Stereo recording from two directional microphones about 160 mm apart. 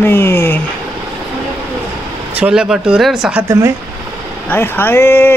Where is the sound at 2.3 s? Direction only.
5° right (ahead or behind).